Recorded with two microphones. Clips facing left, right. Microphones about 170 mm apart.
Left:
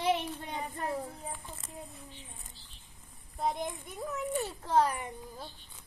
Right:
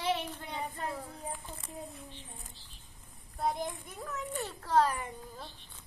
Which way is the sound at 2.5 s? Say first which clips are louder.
Right 1 dB; centre (ahead or behind).